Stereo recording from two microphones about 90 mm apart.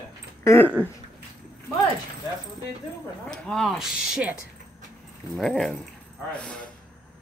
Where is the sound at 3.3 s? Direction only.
5° left (ahead or behind).